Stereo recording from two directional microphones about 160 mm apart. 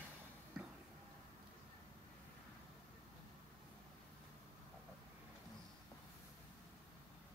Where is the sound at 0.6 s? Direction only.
5° right (ahead or behind).